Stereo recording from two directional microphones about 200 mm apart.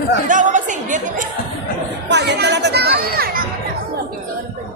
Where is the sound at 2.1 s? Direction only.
60° right (ahead or behind).